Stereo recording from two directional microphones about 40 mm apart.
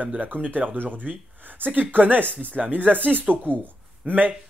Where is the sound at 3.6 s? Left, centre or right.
Right.